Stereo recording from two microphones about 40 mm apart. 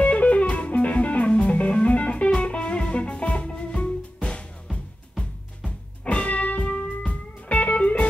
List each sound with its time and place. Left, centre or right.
0.0 s music: left
7.1 s music: left